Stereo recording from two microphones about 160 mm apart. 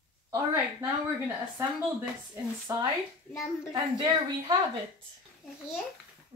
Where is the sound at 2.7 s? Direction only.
20° right (ahead or behind).